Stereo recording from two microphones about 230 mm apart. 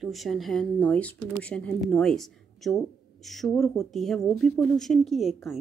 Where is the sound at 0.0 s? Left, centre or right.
Centre.